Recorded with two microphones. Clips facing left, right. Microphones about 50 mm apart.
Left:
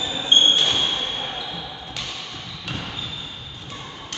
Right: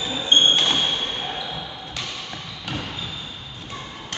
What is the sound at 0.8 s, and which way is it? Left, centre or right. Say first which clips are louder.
Basketball bounce: even; centre.